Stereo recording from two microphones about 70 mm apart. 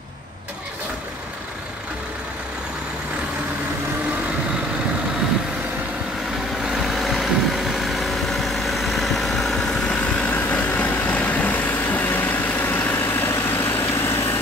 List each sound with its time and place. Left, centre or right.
6.6 s vehicle: centre; by 13.8 s left
13.8 s vehicle: left